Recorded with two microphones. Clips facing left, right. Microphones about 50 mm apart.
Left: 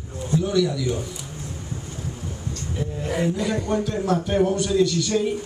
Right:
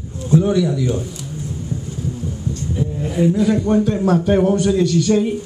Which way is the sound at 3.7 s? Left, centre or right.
Centre.